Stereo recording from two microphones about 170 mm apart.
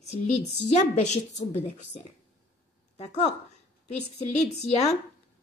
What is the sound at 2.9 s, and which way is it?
A woman's voice, 40° left (ahead or behind).